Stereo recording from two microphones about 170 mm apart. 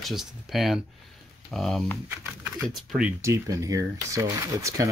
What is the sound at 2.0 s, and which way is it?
Speech, 10° right (ahead or behind).